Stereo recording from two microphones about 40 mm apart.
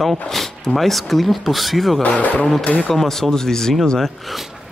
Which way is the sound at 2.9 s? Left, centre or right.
Centre.